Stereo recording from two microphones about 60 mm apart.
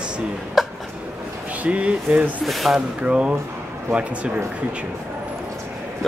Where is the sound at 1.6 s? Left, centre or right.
Right.